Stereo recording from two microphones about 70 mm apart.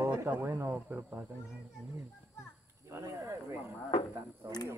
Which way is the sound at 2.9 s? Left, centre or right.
Right.